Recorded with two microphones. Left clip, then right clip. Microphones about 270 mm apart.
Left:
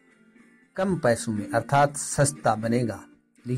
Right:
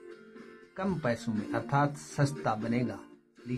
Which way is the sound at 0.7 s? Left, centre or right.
Centre.